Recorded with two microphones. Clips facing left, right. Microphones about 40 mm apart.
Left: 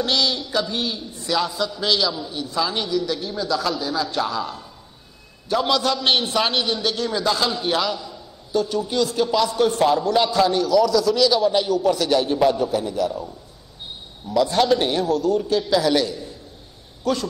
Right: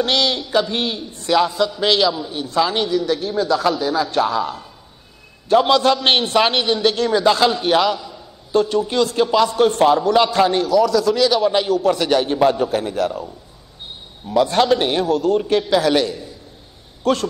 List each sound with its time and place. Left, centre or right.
0.0 s a man's voice: right
10.7 s a man's voice: right
14.3 s a man's voice: right
15.9 s a man's voice: right
17.0 s speech: right